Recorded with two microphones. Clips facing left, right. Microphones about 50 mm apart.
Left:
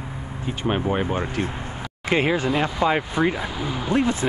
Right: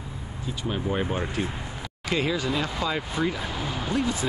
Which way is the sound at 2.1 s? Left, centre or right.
Left.